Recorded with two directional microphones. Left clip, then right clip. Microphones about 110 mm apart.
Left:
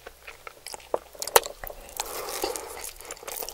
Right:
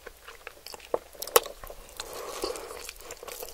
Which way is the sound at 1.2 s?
15° right (ahead or behind).